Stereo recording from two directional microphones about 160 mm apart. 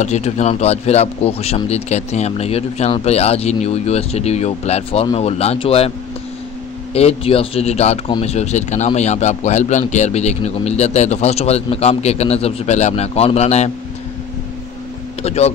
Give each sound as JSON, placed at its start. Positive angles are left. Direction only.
{"t": 0.0, "sound": "a man's voice", "side_deg": 45}
{"t": 15.2, "sound": "a man's voice", "side_deg": 40}